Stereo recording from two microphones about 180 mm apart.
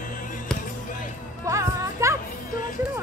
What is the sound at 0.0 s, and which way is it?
Music, 50° left (ahead or behind).